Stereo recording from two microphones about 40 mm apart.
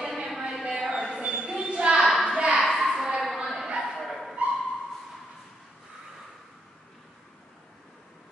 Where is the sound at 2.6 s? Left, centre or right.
Centre.